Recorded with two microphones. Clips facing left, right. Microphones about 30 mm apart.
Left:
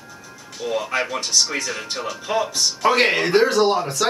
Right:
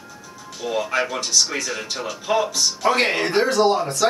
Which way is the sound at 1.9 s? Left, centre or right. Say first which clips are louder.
Right 2 dB; centre.